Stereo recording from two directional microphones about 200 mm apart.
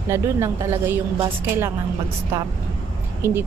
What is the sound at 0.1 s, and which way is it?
A woman's voice, 15° right (ahead or behind).